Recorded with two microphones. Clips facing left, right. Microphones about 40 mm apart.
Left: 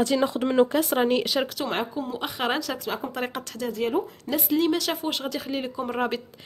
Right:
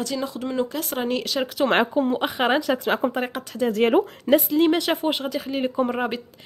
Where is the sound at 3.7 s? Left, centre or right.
Right.